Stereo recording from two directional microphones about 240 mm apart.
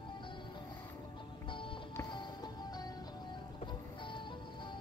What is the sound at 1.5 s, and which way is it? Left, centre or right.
Music, left.